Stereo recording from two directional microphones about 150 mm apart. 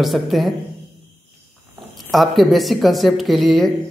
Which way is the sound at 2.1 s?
Centre (ahead or behind).